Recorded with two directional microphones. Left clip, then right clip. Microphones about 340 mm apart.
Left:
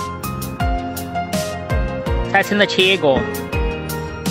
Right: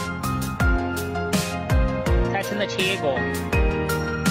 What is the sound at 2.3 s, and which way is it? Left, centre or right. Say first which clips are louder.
Speech: left 9 dB; centre.